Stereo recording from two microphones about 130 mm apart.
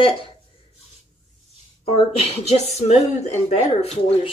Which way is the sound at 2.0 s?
45° left (ahead or behind).